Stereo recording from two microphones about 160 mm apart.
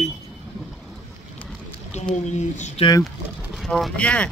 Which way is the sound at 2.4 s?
45° left (ahead or behind).